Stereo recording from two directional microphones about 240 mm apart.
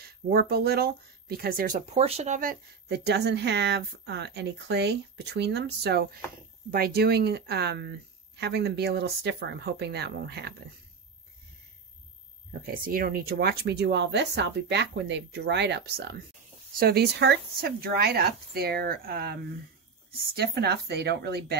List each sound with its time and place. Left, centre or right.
0.0 s speech: right
12.4 s speech: right